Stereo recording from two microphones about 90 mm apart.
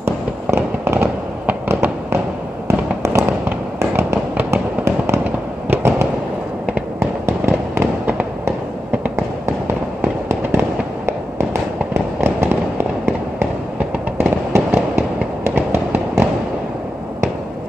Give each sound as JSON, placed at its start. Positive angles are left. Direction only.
{"t": 0.0, "sound": "fireworks", "side_deg": -25}
{"t": 10.0, "sound": "fireworks", "side_deg": -30}
{"t": 11.9, "sound": "fireworks", "side_deg": -30}